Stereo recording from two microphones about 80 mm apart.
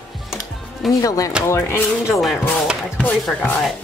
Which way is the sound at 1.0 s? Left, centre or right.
Left.